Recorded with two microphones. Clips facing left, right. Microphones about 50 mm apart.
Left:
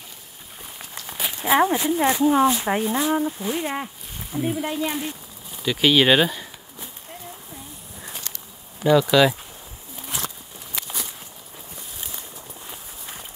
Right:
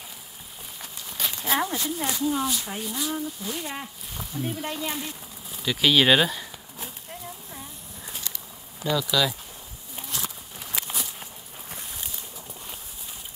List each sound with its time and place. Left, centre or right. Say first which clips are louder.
1.1 s a sound: left 7 dB; centre
1.6 s speech: left 9 dB; left
4.6 s speech: left 5 dB; centre
8.9 s speech: left 8 dB; left
10.8 s walk: even; centre